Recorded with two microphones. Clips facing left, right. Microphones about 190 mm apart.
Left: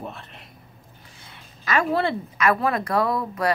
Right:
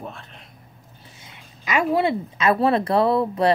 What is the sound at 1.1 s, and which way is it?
Speech, 15° right (ahead or behind).